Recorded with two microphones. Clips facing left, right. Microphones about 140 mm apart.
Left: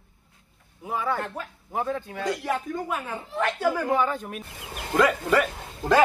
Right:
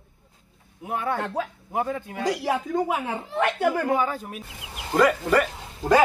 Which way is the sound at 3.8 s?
5° right (ahead or behind).